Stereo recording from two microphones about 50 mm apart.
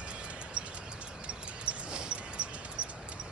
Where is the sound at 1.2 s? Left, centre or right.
Right.